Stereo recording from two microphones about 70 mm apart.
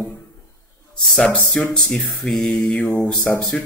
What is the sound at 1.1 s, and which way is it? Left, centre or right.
Speech, centre.